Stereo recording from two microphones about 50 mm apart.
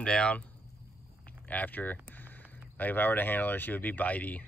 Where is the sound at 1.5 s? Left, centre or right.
Left.